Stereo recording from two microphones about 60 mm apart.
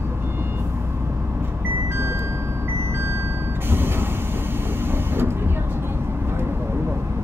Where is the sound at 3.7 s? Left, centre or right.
Right.